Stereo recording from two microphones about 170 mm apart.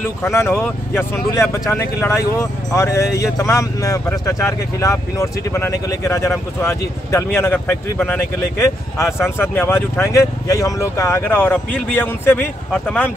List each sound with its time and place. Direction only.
0.2 s speech: 15° left (ahead or behind)